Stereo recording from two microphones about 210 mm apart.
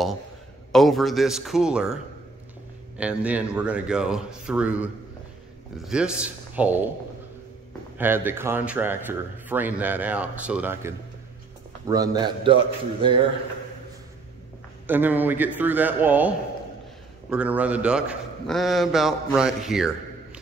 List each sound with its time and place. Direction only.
0.7 s a man's voice: centre (ahead or behind)
3.0 s a man's voice: 5° right (ahead or behind)
8.0 s a man's voice: 10° right (ahead or behind)
14.9 s a man's voice: 10° right (ahead or behind)